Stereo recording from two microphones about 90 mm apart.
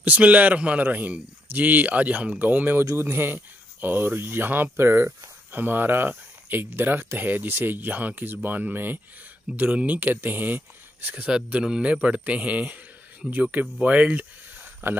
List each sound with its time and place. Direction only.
0.0 s speech: 15° right (ahead or behind)
2.8 s speech: 30° right (ahead or behind)